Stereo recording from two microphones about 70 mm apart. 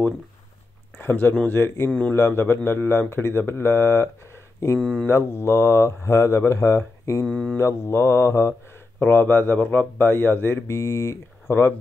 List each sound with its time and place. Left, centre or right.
0.9 s speech: left
1.9 s mantra: centre
2.1 s speech: left
4.7 s mantra: centre
5.0 s speech: left
7.2 s mantra: centre
7.5 s speech: left
9.0 s a man's voice: left
10.7 s speech: left